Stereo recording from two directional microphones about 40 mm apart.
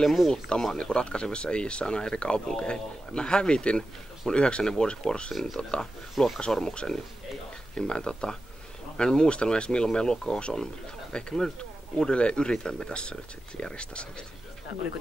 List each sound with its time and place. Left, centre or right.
0.0 s speech: centre
0.3 s speech: centre
6.1 s speech: centre
6.5 s speech: left